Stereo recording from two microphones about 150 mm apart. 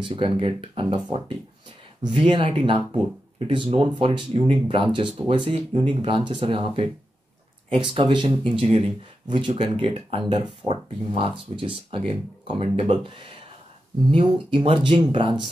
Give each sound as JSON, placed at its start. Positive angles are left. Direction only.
{"t": 0.0, "sound": "speech", "side_deg": -35}